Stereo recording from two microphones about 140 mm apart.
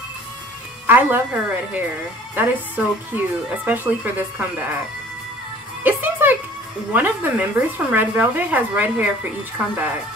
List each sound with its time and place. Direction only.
0.8 s a woman's voice: 15° right (ahead or behind)
5.9 s music: 15° right (ahead or behind)
6.9 s a woman's voice: 10° right (ahead or behind)